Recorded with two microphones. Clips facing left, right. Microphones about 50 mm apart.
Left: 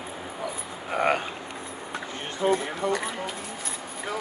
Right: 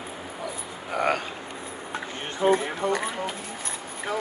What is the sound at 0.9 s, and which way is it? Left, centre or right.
Speech, centre.